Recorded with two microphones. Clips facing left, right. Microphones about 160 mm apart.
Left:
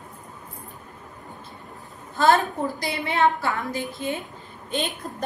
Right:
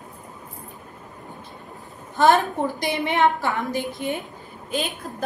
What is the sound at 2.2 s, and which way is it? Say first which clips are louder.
A woman's voice: right 2 dB; 20° right (ahead or behind).